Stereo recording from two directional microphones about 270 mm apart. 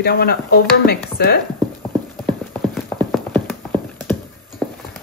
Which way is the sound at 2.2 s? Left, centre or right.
Centre.